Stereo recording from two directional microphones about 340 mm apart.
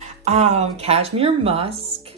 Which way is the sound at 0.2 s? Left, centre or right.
Centre.